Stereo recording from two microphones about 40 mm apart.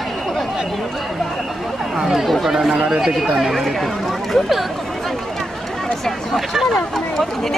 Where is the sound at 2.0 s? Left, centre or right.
Centre.